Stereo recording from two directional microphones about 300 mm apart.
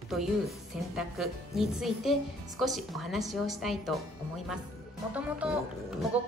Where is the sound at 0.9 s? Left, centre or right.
Centre.